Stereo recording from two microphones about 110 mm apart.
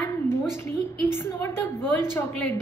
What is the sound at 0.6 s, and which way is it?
A woman's voice, 20° left (ahead or behind).